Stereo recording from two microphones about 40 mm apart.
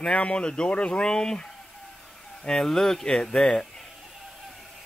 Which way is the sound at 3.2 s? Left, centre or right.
Left.